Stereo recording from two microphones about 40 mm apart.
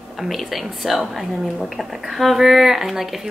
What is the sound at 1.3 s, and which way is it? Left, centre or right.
Speech, centre.